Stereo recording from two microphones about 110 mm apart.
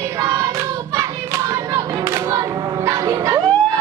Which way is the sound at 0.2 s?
30° right (ahead or behind).